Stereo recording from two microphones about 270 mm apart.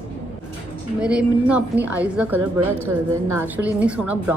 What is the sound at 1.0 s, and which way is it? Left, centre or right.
A woman's voice, centre.